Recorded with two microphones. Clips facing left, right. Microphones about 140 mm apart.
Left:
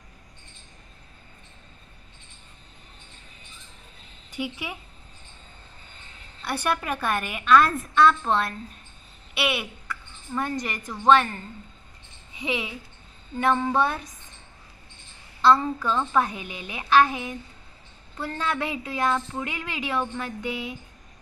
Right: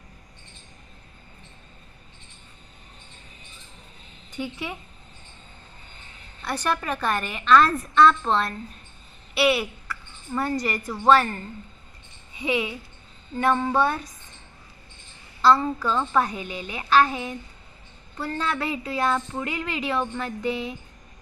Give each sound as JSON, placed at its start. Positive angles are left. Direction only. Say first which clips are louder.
{"t": 4.3, "sound": "speech", "louder": "right 1 dB", "side_deg": 10}
{"t": 6.4, "sound": "a woman's voice", "louder": "even", "side_deg": 5}
{"t": 15.4, "sound": "a woman's voice", "louder": "even", "side_deg": 0}